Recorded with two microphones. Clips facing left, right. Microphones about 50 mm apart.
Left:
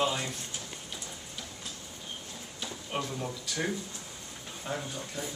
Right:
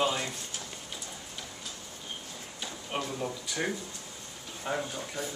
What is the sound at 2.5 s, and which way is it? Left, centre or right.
Speech, centre.